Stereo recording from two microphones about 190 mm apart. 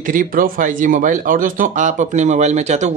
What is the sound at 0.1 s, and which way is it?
Speech, 45° right (ahead or behind).